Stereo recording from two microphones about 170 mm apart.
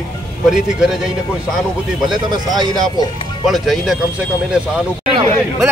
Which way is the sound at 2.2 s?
25° right (ahead or behind).